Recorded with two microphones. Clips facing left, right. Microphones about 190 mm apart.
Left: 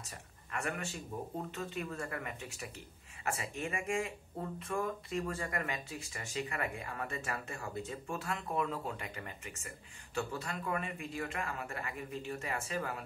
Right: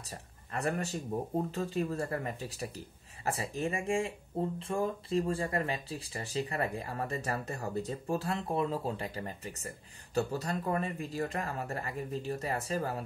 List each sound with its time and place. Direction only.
0.0 s speech: 35° right (ahead or behind)